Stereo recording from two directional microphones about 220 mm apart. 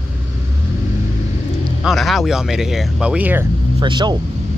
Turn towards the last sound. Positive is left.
turn(degrees=-20)  # may be behind; listen again after turning